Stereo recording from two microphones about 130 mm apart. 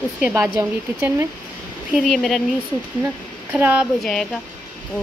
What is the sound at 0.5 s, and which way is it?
Speech, 20° right (ahead or behind).